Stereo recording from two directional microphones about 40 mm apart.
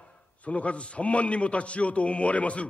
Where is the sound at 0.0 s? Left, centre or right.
Left.